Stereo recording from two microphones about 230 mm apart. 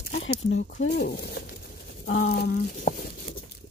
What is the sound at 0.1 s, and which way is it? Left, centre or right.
Speech, left.